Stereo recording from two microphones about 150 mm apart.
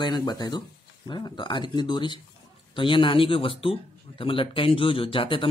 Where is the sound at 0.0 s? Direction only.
30° left (ahead or behind).